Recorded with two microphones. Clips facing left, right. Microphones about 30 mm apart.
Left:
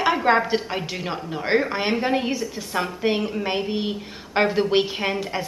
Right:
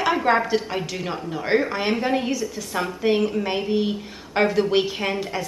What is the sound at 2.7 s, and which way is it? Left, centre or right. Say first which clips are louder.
Speech: right 1 dB; centre.